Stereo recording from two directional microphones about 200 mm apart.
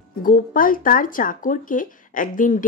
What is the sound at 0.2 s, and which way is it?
A woman's voice, 45° left (ahead or behind).